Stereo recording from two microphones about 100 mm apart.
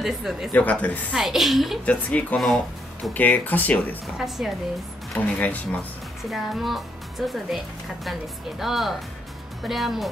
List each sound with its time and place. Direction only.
0.0 s speech: 5° right (ahead or behind)
0.5 s speech: 15° left (ahead or behind)
1.1 s speech: centre (ahead or behind)
1.9 s speech: 15° left (ahead or behind)
2.3 s speech: centre (ahead or behind)
3.1 s speech: 15° left (ahead or behind)
4.4 s speech: 10° right (ahead or behind)
5.2 s speech: 15° left (ahead or behind)
6.3 s speech: centre (ahead or behind)